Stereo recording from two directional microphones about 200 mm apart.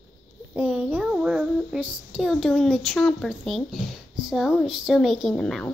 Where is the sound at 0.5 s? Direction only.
5° right (ahead or behind).